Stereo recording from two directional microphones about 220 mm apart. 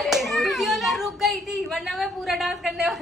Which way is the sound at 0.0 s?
Centre (ahead or behind).